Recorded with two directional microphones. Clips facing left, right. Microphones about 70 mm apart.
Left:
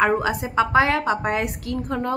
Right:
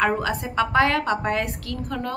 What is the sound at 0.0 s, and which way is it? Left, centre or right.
A woman's voice, centre.